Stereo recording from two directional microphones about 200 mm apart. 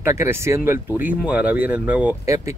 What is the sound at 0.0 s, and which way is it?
Speech, 15° right (ahead or behind).